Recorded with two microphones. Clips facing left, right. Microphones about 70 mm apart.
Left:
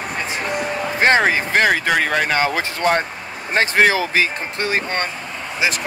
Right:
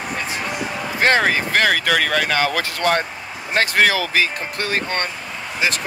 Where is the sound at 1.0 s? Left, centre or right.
Left.